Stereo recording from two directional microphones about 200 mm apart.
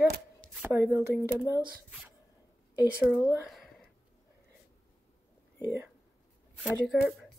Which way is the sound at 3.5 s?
Centre (ahead or behind).